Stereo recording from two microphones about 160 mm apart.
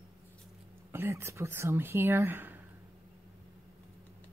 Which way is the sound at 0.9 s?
15° right (ahead or behind).